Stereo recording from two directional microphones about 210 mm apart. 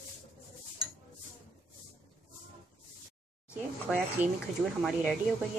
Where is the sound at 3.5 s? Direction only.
5° right (ahead or behind).